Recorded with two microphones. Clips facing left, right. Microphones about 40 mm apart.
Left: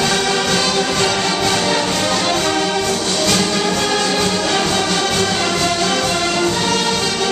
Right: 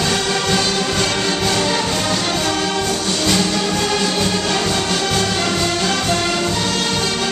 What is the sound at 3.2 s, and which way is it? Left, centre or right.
Music, centre.